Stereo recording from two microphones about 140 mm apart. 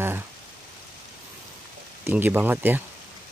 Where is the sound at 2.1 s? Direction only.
15° right (ahead or behind).